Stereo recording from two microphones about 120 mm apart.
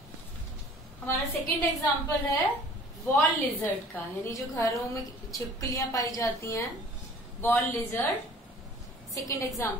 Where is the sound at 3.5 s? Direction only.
15° left (ahead or behind).